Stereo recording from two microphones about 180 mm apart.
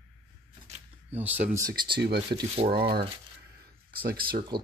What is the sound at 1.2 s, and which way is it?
Speech, 10° right (ahead or behind).